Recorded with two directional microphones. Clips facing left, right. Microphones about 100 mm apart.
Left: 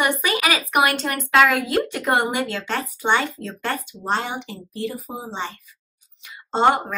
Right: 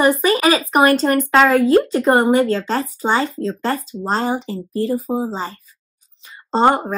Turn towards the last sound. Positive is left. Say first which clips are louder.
# right 3 dB
turn(degrees=-35)  # may be behind; listen again after turning